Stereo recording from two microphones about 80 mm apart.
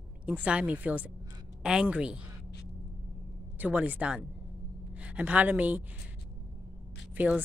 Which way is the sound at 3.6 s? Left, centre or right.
Centre.